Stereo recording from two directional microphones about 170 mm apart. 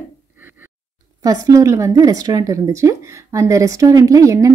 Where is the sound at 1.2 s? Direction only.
20° right (ahead or behind).